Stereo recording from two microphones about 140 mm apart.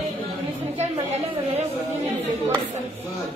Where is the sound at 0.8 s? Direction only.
50° right (ahead or behind).